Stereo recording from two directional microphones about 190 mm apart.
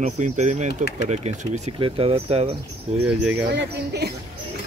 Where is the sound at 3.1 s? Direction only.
5° right (ahead or behind).